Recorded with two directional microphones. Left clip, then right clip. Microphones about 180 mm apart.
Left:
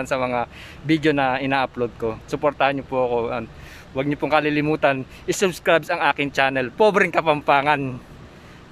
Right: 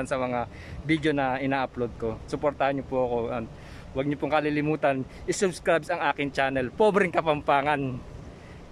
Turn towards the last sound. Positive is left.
turn(degrees=-5)  # may be behind; listen again after turning